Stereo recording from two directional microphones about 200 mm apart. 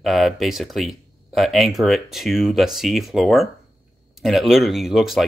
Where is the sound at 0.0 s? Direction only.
Centre (ahead or behind).